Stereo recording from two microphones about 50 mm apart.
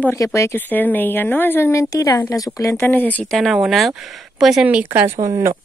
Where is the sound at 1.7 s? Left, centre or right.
Left.